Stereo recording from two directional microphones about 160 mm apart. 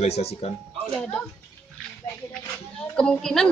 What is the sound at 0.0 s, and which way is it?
Speech, 40° left (ahead or behind).